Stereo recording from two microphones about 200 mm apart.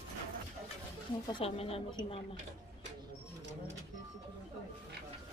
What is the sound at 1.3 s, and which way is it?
Speech, 30° left (ahead or behind).